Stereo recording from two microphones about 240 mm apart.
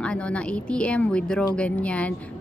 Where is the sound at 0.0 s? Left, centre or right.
Centre.